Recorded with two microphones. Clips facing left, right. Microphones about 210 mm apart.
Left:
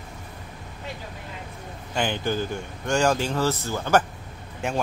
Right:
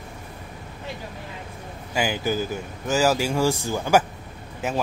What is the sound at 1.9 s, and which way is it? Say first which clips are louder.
A man's voice: right 1 dB; 5° right (ahead or behind).